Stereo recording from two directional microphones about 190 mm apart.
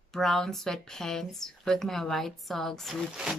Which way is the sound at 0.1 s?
Centre (ahead or behind).